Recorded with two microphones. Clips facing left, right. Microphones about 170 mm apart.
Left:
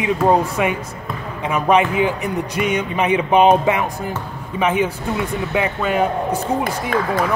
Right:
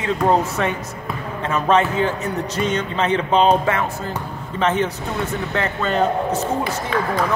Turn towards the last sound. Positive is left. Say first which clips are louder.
# left 2 dB
turn(degrees=50)  # may be behind; listen again after turning